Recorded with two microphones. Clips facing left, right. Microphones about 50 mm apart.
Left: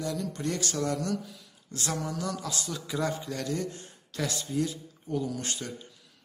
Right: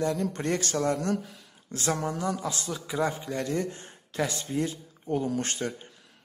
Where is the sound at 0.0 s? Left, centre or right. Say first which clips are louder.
Right 4 dB; right.